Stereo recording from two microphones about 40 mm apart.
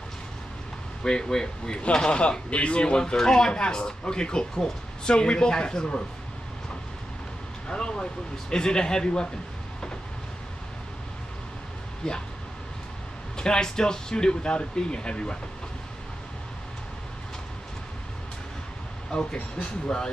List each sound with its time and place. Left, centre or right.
1.0 s speech: centre
7.6 s speech: centre
13.4 s speech: centre
19.1 s speech: centre